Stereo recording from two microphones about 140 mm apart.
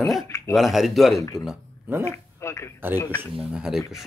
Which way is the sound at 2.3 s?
20° left (ahead or behind).